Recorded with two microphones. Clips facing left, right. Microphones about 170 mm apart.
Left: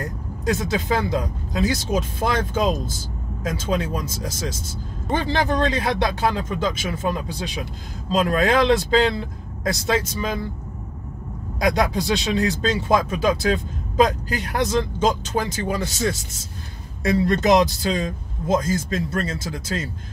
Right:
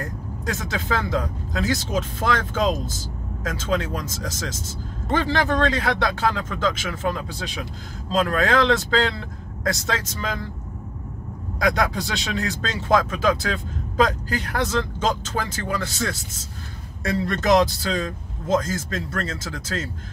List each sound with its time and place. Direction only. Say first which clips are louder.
0.5 s speech: left 5 dB; 15° left (ahead or behind)
11.6 s speech: left 2 dB; 15° left (ahead or behind)